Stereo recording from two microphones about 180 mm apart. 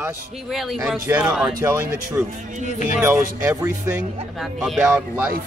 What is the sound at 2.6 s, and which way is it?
Speech, 40° left (ahead or behind).